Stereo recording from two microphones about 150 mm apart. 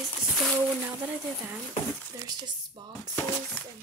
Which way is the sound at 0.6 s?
15° right (ahead or behind).